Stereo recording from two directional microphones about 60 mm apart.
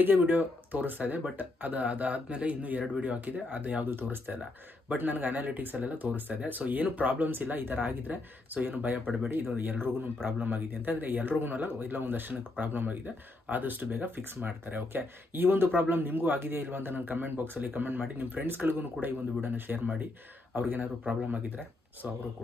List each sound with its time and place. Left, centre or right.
0.0 s speech: right
3.9 s speech: right
22.0 s speech: centre